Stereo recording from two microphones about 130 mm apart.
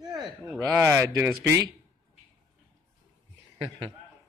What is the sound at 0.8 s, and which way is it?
Speech, 15° right (ahead or behind).